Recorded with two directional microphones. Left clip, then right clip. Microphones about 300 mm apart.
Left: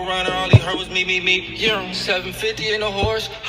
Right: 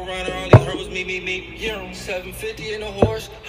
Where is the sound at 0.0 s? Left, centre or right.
Centre.